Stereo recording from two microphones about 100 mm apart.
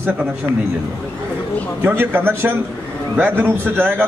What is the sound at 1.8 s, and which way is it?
A man's voice, 20° right (ahead or behind).